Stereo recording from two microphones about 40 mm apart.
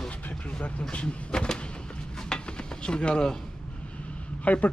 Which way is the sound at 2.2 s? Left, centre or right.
Left.